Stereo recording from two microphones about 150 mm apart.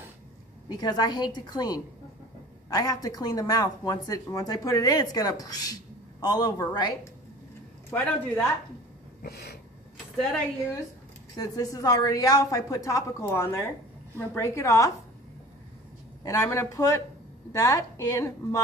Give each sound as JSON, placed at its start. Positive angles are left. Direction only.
{"t": 0.7, "sound": "speech", "side_deg": 25}
{"t": 7.9, "sound": "a woman's voice", "side_deg": 15}
{"t": 9.2, "sound": "a sound", "side_deg": 90}
{"t": 11.3, "sound": "a woman's voice", "side_deg": 25}
{"t": 16.3, "sound": "speech", "side_deg": 20}